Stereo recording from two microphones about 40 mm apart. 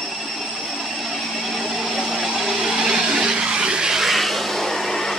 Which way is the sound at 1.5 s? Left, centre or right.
Centre.